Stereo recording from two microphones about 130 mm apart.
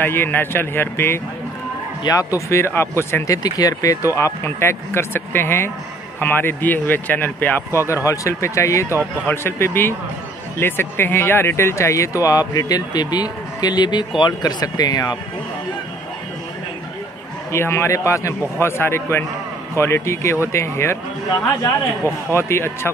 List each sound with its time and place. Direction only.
0.0 s speech: 15° left (ahead or behind)
3.4 s speech: 30° left (ahead or behind)
7.9 s speech: 25° left (ahead or behind)
17.5 s speech: 20° left (ahead or behind)
22.3 s speech: 20° left (ahead or behind)